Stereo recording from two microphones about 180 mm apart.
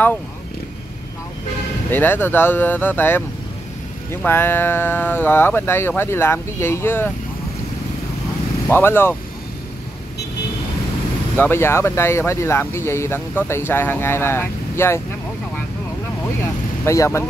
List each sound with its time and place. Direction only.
1.9 s speech: 10° left (ahead or behind)
8.6 s speech: 10° left (ahead or behind)
11.3 s speech: 10° left (ahead or behind)
16.8 s speech: 15° left (ahead or behind)